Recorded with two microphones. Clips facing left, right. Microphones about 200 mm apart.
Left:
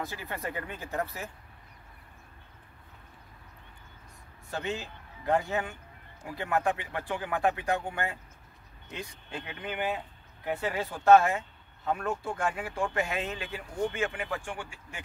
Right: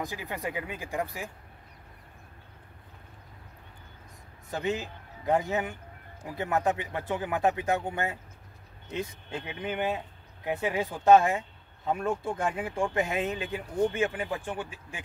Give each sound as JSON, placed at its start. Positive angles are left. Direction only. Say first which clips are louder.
{"t": 0.0, "sound": "speech", "louder": "right 2 dB", "side_deg": -15}
{"t": 4.5, "sound": "a man's voice", "louder": "right 4 dB", "side_deg": -15}